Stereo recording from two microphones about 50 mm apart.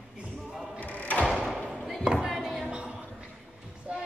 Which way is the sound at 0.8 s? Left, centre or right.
Left.